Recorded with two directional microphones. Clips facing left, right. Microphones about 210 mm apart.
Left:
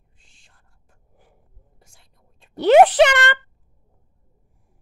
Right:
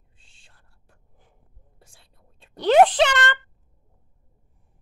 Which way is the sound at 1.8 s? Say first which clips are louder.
Right 3 dB; 30° right (ahead or behind).